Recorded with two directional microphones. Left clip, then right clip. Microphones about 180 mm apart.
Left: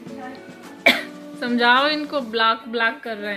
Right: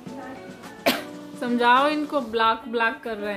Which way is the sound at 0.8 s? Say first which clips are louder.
Left 7 dB; 5° right (ahead or behind).